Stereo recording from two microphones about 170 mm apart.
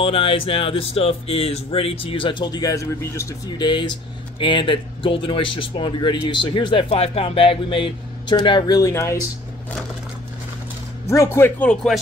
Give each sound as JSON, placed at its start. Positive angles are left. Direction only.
{"t": 0.0, "sound": "speech", "side_deg": 35}
{"t": 11.1, "sound": "speech", "side_deg": 15}